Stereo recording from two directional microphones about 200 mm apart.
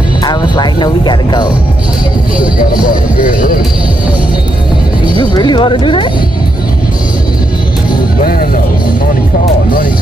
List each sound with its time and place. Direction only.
0.2 s music: 20° left (ahead or behind)
2.8 s speech: 45° left (ahead or behind)
5.1 s speech: 20° left (ahead or behind)
8.2 s speech: 45° left (ahead or behind)